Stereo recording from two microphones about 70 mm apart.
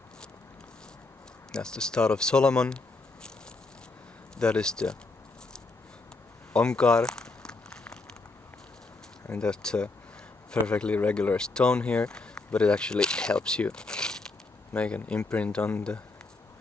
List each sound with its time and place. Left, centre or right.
1.5 s speech: centre
4.4 s speech: centre
6.5 s a sound: centre
9.3 s speech: centre